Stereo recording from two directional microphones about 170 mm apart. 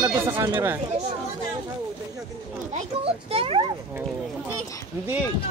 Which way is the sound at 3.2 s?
35° right (ahead or behind).